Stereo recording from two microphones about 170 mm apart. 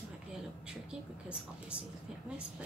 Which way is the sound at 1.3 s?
5° right (ahead or behind).